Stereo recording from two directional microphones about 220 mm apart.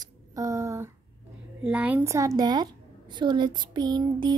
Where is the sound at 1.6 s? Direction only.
5° right (ahead or behind).